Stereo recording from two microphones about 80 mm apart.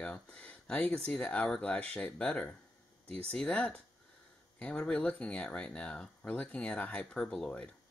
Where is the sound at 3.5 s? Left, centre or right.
Centre.